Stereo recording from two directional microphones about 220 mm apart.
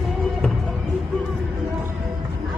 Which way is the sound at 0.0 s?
Centre (ahead or behind).